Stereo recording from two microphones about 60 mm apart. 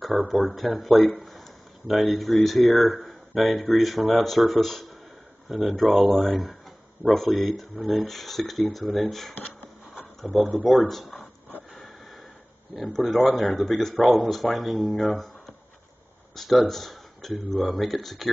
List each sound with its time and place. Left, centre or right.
0.1 s speech: centre
11.1 s a sound: left
12.8 s speech: centre
16.3 s speech: centre